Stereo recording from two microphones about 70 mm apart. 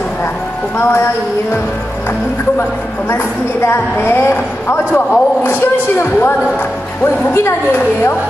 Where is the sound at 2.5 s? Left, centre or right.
Left.